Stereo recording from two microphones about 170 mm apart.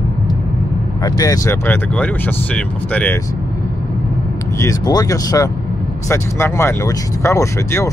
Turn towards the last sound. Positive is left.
turn(degrees=15)  # may be behind; listen again after turning